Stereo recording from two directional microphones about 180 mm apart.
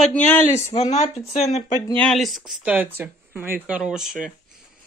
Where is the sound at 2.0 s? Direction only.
Centre (ahead or behind).